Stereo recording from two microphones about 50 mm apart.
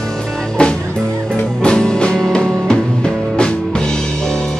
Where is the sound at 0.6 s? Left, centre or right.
Centre.